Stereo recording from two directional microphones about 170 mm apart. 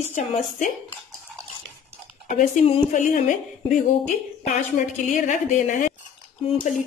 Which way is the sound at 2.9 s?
45° left (ahead or behind).